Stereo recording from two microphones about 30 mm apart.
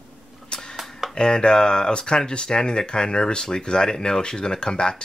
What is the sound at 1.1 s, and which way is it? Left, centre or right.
Speech, left.